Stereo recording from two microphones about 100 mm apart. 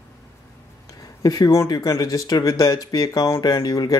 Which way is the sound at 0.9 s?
35° left (ahead or behind).